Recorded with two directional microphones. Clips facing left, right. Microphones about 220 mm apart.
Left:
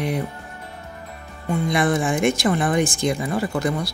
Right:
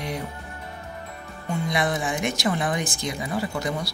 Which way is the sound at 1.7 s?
50° left (ahead or behind).